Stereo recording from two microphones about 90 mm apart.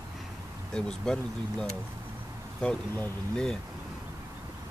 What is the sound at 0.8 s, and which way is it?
Speech, 5° left (ahead or behind).